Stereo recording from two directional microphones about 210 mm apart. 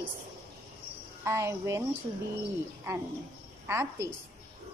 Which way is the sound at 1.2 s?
15° right (ahead or behind).